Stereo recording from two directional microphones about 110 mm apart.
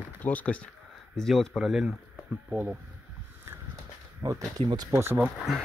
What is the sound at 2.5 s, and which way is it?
Speech, 20° right (ahead or behind).